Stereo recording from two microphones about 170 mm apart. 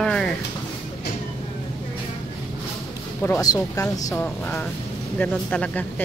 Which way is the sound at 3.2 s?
20° left (ahead or behind).